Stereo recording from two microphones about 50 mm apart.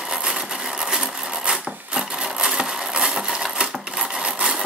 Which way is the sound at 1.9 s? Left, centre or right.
Centre.